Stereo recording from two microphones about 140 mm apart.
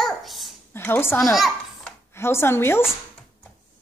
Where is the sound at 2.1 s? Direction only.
20° left (ahead or behind).